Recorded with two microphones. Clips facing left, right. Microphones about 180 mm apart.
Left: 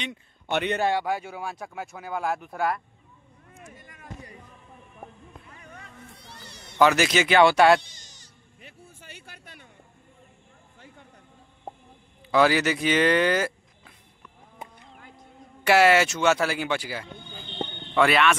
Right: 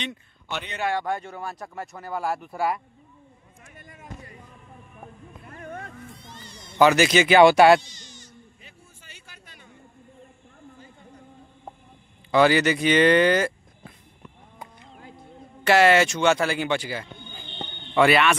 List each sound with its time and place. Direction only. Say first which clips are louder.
0.5 s a man's voice: left 8 dB; 60° left (ahead or behind)
0.9 s speech: even; 5° left (ahead or behind)
5.5 s a sound: right 9 dB; 55° right (ahead or behind)
6.1 s a sound: right 2 dB; 70° left (ahead or behind)
6.8 s speech: right 3 dB; centre (ahead or behind)
7.8 s insect: right 7 dB; 50° left (ahead or behind)
8.6 s a sound: left 4 dB; 60° left (ahead or behind)
12.3 s speech: right 2 dB; centre (ahead or behind)
15.6 s speech: right 1 dB; 10° left (ahead or behind)